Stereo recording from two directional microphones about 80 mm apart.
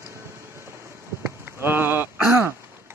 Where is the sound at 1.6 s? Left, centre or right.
Right.